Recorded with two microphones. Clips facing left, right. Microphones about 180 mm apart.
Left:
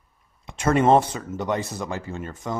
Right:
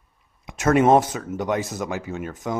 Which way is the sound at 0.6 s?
5° right (ahead or behind).